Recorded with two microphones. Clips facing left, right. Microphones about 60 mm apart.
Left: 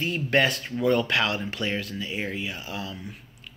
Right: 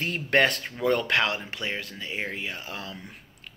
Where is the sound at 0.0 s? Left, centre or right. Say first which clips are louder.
Even; right.